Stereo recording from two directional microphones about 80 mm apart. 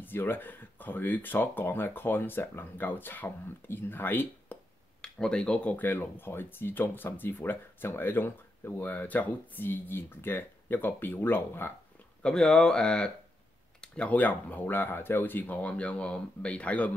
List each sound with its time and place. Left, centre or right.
0.0 s speech: left
5.0 s speech: centre; by 11.7 s left
12.2 s speech: centre